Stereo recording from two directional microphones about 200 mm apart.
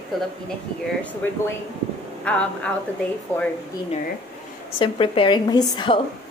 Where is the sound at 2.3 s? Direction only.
5° left (ahead or behind).